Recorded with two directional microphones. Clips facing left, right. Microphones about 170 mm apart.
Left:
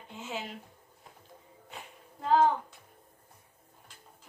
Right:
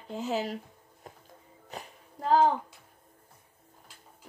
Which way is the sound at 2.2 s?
40° right (ahead or behind).